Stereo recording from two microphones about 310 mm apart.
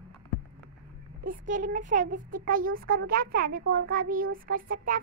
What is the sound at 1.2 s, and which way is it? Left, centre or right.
A child's voice, right.